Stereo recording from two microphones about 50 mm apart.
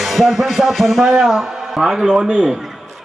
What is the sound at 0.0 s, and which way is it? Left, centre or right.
A man's voice, centre.